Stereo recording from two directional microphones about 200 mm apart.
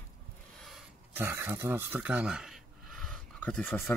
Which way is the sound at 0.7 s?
5° right (ahead or behind).